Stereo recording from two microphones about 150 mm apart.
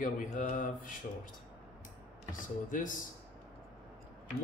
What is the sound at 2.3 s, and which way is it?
Speech, 60° left (ahead or behind).